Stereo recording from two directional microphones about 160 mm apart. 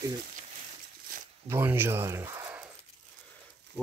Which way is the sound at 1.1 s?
60° right (ahead or behind).